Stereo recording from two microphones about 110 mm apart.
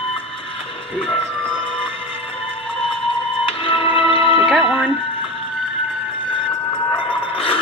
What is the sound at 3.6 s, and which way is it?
Music, 55° left (ahead or behind).